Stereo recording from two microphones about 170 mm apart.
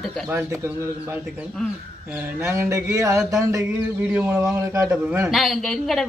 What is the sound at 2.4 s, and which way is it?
Speech, 15° right (ahead or behind).